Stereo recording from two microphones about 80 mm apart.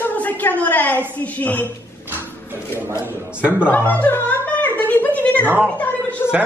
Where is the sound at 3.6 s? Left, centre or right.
Left.